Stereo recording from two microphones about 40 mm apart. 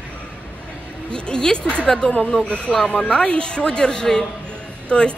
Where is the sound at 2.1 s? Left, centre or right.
Left.